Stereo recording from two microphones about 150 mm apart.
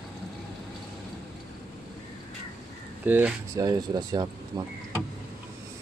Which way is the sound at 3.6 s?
25° right (ahead or behind).